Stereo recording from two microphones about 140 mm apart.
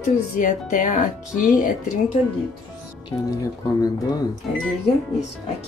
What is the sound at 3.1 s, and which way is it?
Speech, 15° left (ahead or behind).